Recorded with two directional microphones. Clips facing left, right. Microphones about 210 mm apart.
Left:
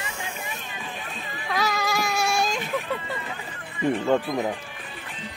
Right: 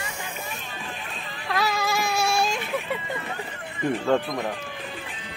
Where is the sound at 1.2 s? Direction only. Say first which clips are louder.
Right 1 dB; centre (ahead or behind).